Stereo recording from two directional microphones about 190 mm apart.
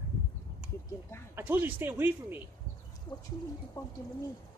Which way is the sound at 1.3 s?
10° right (ahead or behind).